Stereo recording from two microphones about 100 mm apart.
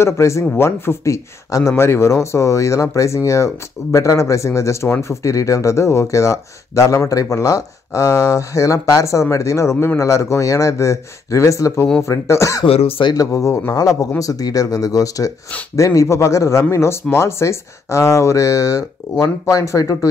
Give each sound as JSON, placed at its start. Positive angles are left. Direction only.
{"t": 0.0, "sound": "speech", "side_deg": 30}
{"t": 12.6, "sound": "speech", "side_deg": 70}
{"t": 13.1, "sound": "speech", "side_deg": 35}